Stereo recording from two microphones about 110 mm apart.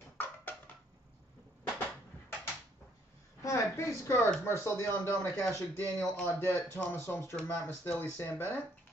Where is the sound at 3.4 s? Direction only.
25° left (ahead or behind).